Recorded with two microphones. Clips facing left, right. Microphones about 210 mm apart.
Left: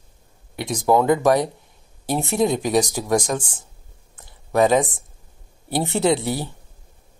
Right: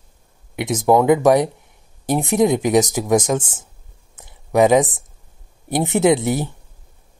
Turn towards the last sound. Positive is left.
turn(degrees=-20)  # may be behind; listen again after turning